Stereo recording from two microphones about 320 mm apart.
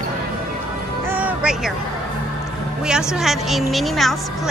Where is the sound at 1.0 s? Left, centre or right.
Centre.